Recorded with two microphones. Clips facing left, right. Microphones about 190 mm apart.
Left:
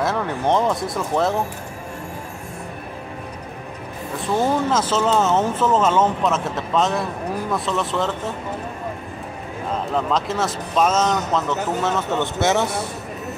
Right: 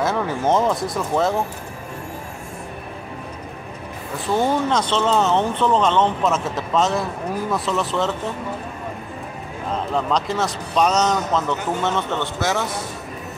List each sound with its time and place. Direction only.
0.0 s speech: centre (ahead or behind)
4.3 s speech: centre (ahead or behind)
9.9 s speech: centre (ahead or behind)
12.4 s a man's voice: 25° left (ahead or behind)